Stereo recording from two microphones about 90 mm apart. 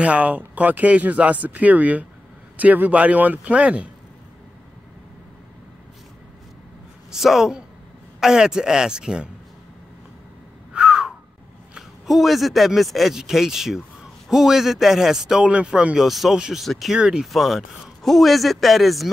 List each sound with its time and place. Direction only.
0.0 s speech: 15° right (ahead or behind)
7.1 s a man's voice: 5° right (ahead or behind)
10.7 s a sound: 10° right (ahead or behind)
11.7 s a man's voice: centre (ahead or behind)